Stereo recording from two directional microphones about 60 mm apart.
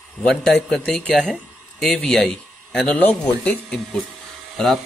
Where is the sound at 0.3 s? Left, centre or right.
Centre.